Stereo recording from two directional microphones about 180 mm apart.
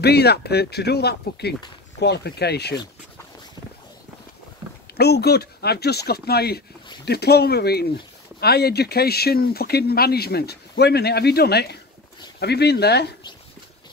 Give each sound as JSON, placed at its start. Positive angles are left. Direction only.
{"t": 0.0, "sound": "speech", "side_deg": 65}
{"t": 4.9, "sound": "speech", "side_deg": 65}